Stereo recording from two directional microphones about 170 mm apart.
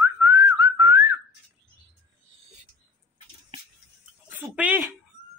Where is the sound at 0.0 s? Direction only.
20° right (ahead or behind).